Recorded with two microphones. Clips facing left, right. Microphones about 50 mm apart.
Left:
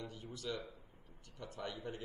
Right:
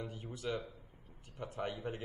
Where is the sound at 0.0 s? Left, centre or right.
Right.